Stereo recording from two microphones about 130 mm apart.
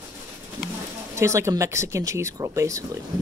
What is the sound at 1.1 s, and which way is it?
Speech, 20° right (ahead or behind).